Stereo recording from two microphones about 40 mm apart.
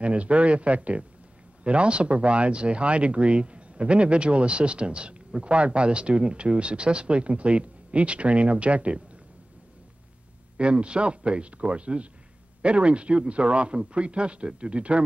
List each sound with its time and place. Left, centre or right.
0.0 s speech: right
10.6 s speech: right